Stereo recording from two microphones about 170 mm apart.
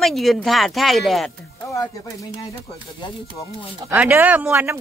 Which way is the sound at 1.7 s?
20° left (ahead or behind).